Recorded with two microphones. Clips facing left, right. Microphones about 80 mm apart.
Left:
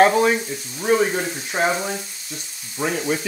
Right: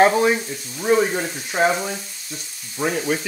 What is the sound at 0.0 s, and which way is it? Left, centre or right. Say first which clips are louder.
Speech: even; centre.